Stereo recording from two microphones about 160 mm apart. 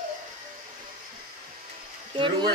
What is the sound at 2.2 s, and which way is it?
Speech, 30° right (ahead or behind).